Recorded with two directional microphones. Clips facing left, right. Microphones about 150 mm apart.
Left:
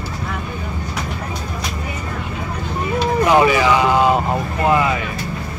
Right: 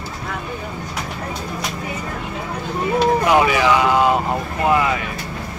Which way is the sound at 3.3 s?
Centre (ahead or behind).